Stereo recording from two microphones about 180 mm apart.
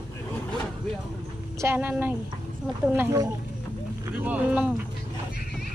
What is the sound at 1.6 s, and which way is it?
Speech, 10° right (ahead or behind).